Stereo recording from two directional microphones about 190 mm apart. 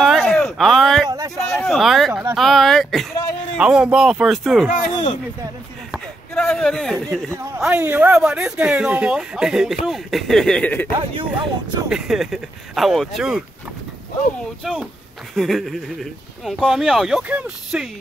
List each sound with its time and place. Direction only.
0.0 s a sound: centre (ahead or behind)
1.0 s a sound: 20° right (ahead or behind)
1.5 s speech: 5° left (ahead or behind)
4.9 s speech: 25° left (ahead or behind)
5.9 s a sound: 5° left (ahead or behind)
7.3 s speech: 10° right (ahead or behind); by 10.9 s 5° left (ahead or behind)
11.0 s speech: 25° right (ahead or behind)
11.9 s speech: centre (ahead or behind)
14.6 s speech: centre (ahead or behind)